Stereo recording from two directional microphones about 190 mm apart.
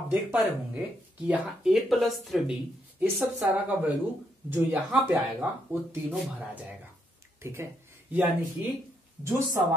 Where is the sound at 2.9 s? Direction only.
10° right (ahead or behind).